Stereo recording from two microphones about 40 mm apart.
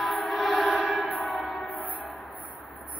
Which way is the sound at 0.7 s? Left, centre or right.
Left.